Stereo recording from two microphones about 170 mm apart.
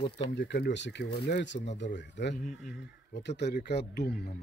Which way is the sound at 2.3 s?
50° left (ahead or behind).